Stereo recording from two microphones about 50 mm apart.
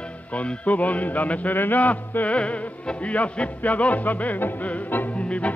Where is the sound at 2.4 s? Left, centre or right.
Left.